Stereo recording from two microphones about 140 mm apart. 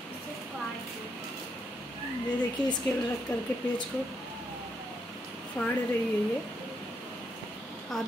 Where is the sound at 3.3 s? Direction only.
15° left (ahead or behind).